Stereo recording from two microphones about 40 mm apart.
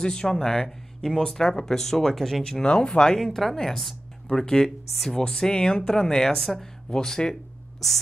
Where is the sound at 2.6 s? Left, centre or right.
Left.